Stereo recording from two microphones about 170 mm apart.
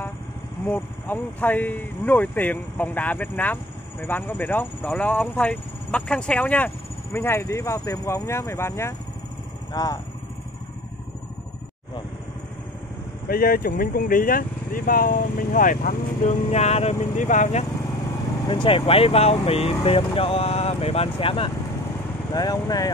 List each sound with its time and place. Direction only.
0.7 s speech: 10° left (ahead or behind)
13.3 s speech: 60° left (ahead or behind)
16.4 s speech: 40° left (ahead or behind)
18.5 s speech: 30° left (ahead or behind)